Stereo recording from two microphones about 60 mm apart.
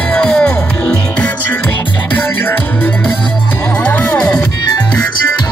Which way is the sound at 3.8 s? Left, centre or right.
Left.